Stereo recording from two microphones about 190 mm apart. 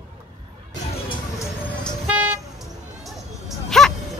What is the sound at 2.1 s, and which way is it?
Toot, centre (ahead or behind).